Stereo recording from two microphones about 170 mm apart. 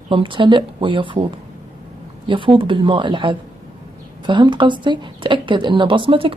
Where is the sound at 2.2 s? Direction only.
30° right (ahead or behind).